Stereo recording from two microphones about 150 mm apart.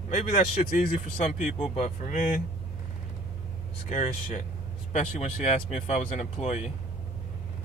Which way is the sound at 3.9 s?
55° left (ahead or behind).